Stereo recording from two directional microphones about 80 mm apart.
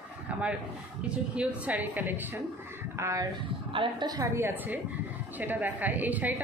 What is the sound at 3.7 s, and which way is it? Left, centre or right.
Speech, right.